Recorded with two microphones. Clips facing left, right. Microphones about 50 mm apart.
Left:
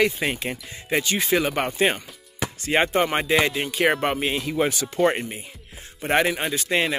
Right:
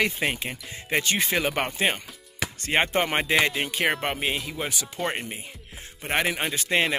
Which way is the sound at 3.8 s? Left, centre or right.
Centre.